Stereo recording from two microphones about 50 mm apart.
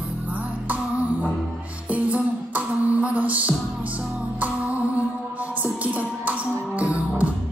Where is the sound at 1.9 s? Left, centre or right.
Right.